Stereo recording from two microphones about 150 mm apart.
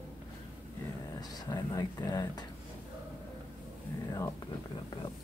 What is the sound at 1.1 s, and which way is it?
Speech, 25° left (ahead or behind).